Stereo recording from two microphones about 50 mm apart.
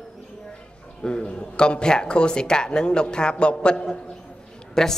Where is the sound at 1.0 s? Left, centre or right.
Centre.